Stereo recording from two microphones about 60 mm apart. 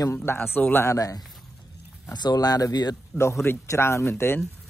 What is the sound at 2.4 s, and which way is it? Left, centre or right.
Speech, left.